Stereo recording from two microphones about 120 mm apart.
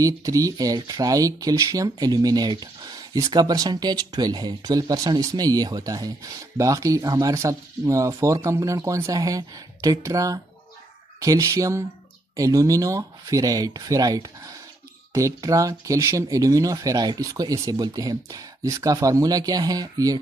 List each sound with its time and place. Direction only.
0.0 s speech: 30° right (ahead or behind)